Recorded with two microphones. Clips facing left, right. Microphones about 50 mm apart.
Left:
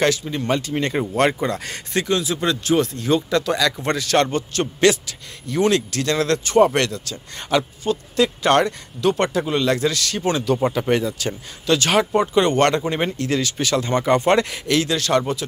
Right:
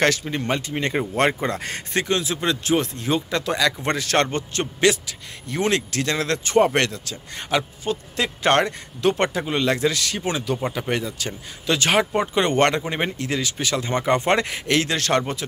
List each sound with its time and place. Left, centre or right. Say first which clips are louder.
0.0 s speech: left 1 dB; right
0.5 s speech: left 3 dB; right
2.3 s speech: left 3 dB; right
4.7 s a man's voice: left 2 dB; centre
5.5 s speech: left 4 dB; right; by 11.3 s centre
11.6 s speech: left 2 dB; right